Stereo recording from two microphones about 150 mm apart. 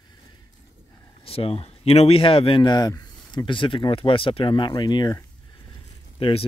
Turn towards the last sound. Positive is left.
turn(degrees=40)  # may be behind; listen again after turning